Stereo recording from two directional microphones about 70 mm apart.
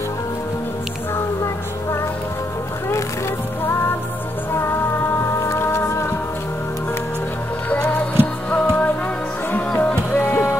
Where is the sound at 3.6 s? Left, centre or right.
Left.